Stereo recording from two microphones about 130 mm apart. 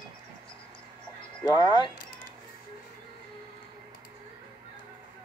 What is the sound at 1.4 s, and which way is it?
Speech, 35° left (ahead or behind).